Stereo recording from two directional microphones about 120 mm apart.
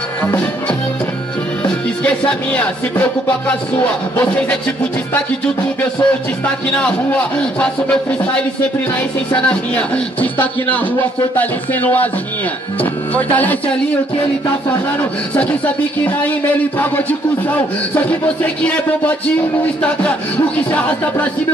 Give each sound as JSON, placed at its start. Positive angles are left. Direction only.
{"t": 1.6, "sound": "music", "side_deg": 10}
{"t": 5.8, "sound": "speech", "side_deg": 10}
{"t": 9.3, "sound": "speech", "side_deg": 10}
{"t": 13.1, "sound": "speech", "side_deg": 15}
{"t": 14.7, "sound": "speech", "side_deg": 10}